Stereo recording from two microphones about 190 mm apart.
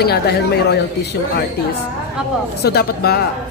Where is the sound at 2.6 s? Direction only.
55° left (ahead or behind).